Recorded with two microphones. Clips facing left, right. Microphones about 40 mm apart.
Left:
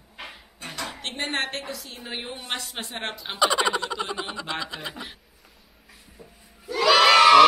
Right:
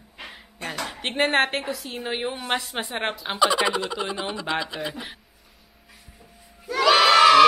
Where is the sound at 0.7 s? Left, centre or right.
Centre.